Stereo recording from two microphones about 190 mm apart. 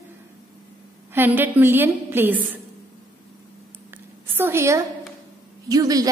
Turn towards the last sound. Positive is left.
turn(degrees=-20)  # may be behind; listen again after turning